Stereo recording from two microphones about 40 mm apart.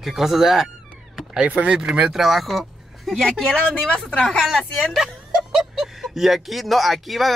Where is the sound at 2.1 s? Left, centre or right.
Centre.